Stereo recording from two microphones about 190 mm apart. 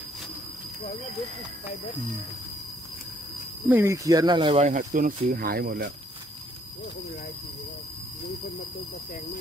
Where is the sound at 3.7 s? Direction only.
15° right (ahead or behind); by 5.8 s 50° right (ahead or behind).